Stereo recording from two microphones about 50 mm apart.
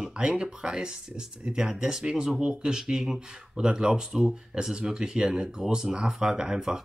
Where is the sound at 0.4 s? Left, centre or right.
Centre.